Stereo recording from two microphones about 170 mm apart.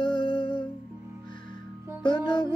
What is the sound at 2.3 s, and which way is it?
Music, 30° left (ahead or behind).